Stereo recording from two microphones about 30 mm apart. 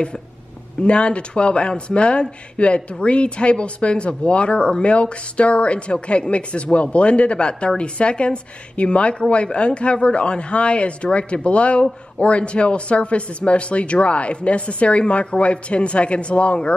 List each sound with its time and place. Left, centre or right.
0.8 s speech: left